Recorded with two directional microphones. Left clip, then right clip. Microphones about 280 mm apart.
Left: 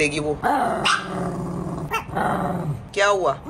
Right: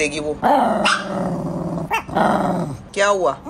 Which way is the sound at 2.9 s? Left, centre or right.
Centre.